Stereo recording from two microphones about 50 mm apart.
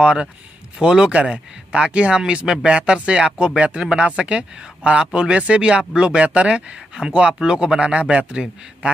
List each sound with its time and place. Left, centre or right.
0.0 s a man's voice: centre